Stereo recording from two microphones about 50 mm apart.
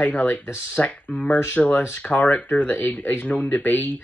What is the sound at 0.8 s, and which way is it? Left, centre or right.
Speech, left.